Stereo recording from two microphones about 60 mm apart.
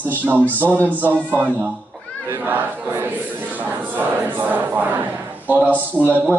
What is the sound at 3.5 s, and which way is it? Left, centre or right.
Speech, right.